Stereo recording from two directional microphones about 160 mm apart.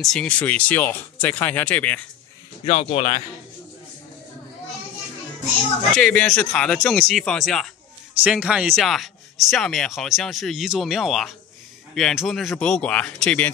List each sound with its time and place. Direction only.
0.0 s speech: 5° left (ahead or behind)
2.6 s speech: 40° left (ahead or behind)
5.9 s speech: 5° left (ahead or behind)